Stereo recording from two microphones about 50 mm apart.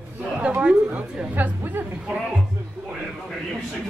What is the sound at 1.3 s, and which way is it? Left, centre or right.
Chatter, right.